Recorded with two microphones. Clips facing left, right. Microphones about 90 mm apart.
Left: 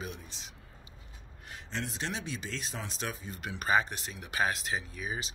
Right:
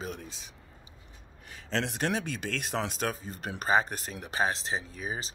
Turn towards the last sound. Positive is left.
turn(degrees=-35)  # may be behind; listen again after turning